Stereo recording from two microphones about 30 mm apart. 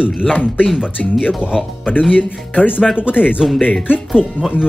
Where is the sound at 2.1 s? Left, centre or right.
Left.